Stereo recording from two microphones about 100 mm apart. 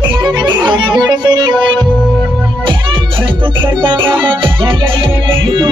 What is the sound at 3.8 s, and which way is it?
Music, 55° right (ahead or behind).